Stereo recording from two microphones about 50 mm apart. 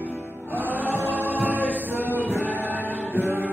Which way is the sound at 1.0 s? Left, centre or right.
Right.